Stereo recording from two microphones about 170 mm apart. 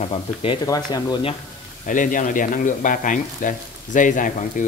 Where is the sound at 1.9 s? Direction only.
50° left (ahead or behind).